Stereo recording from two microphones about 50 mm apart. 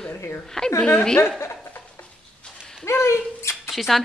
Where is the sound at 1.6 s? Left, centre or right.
Left.